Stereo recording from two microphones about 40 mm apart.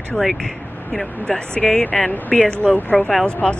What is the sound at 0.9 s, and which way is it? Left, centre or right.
Speech, centre.